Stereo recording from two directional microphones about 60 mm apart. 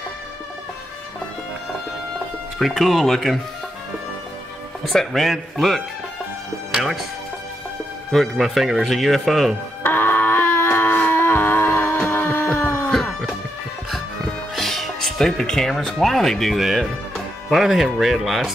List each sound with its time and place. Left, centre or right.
2.6 s a man's voice: centre
4.8 s a man's voice: centre
8.1 s a man's voice: centre
9.8 s music: left
11.1 s a sound: left
12.9 s music: centre
14.2 s speech: centre